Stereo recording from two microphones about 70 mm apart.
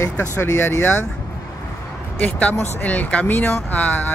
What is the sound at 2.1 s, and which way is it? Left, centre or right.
Speech, left.